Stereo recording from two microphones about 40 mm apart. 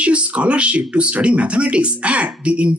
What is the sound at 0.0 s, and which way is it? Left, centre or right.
Speech, right.